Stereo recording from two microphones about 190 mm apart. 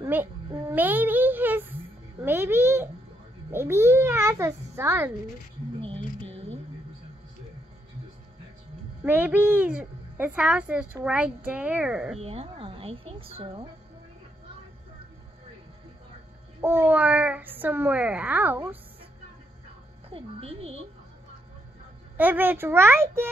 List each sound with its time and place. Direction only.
0.0 s a child's voice: 15° right (ahead or behind)
9.0 s a child's voice: 10° right (ahead or behind)
12.2 s speech: 30° right (ahead or behind)
16.6 s a child's voice: 10° right (ahead or behind)
20.1 s speech: 30° right (ahead or behind)
22.1 s a child's voice: 10° right (ahead or behind)